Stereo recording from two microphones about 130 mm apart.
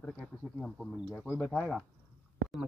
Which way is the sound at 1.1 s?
15° left (ahead or behind).